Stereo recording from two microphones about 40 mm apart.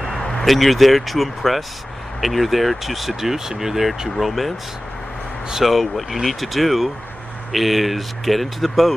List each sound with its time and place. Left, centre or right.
0.1 s a sound: centre
0.5 s speech: centre
5.6 s speech: centre